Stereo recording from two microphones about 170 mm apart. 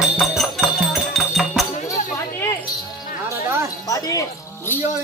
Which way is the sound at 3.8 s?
20° left (ahead or behind).